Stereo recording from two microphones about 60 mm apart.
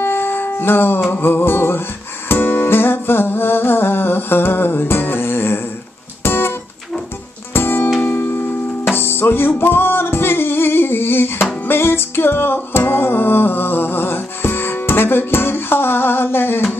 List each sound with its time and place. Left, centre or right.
0.0 s music: left
7.5 s music: left